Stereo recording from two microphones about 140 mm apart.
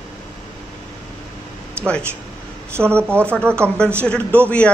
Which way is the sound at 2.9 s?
15° right (ahead or behind).